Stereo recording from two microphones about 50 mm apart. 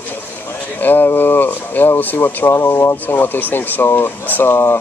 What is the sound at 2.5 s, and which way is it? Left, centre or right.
Speech, left.